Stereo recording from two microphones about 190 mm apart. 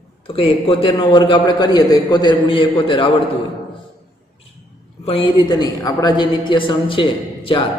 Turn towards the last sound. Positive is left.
turn(degrees=25)  # may be behind; listen again after turning